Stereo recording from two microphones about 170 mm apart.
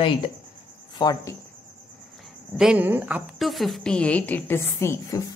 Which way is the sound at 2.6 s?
10° right (ahead or behind).